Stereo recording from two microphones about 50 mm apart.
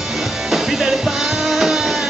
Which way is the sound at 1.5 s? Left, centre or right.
Centre.